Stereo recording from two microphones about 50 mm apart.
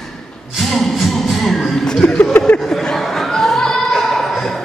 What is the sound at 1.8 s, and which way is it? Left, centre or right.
Speech, centre.